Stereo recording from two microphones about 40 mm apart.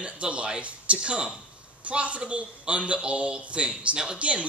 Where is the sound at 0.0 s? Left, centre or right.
Right.